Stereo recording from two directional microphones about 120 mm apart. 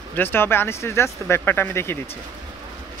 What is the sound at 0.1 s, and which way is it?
Speech, 15° left (ahead or behind).